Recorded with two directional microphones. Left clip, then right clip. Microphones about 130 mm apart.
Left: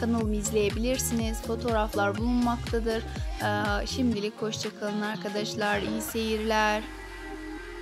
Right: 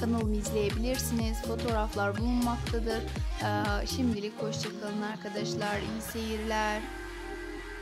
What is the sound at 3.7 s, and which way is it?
Music, 25° left (ahead or behind).